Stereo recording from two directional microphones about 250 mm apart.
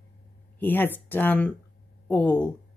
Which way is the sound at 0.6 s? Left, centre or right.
Centre.